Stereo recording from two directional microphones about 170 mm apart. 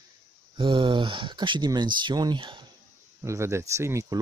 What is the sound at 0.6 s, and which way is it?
Speech, 30° right (ahead or behind).